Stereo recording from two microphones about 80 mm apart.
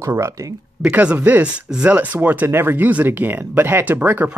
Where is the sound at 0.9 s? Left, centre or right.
Right.